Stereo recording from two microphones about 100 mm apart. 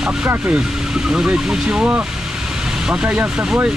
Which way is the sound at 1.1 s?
10° right (ahead or behind).